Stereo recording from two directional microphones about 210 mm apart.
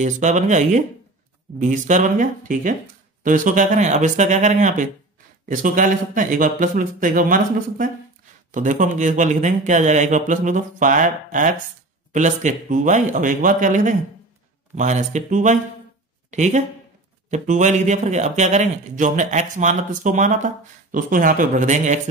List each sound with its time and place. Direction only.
0.0 s speech: 35° right (ahead or behind)